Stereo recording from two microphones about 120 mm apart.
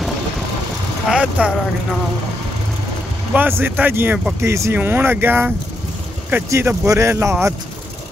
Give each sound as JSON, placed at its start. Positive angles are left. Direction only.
{"t": 1.0, "sound": "speech", "side_deg": -5}
{"t": 3.3, "sound": "speech", "side_deg": -15}